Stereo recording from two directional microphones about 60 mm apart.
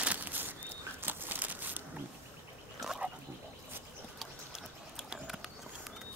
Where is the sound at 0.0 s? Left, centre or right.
Right.